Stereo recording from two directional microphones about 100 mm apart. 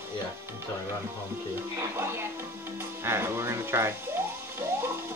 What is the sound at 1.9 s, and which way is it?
Music, 25° right (ahead or behind).